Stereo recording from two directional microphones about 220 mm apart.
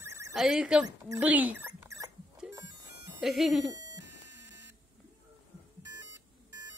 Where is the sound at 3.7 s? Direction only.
15° right (ahead or behind).